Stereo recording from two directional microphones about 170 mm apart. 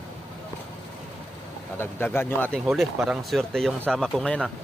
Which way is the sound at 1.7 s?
15° left (ahead or behind).